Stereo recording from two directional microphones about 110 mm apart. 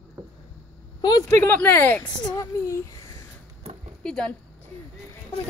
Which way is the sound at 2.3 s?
25° left (ahead or behind).